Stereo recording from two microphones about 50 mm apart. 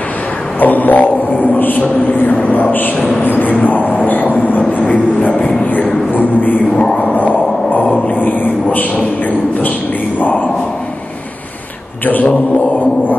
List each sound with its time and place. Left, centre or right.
0.6 s a man's voice: left
5.6 s music: left
7.2 s a sound: left